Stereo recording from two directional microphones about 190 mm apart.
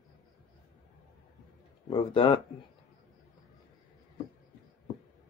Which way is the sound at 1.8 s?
25° left (ahead or behind).